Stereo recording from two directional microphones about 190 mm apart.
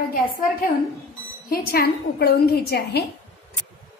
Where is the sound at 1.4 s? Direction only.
50° left (ahead or behind).